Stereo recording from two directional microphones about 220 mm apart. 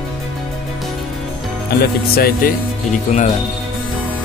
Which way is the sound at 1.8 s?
45° left (ahead or behind).